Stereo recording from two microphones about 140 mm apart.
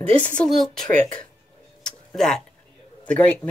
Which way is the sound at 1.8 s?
5° left (ahead or behind).